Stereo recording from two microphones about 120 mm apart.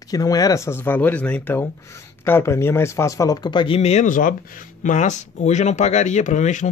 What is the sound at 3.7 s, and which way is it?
Speech, 65° left (ahead or behind).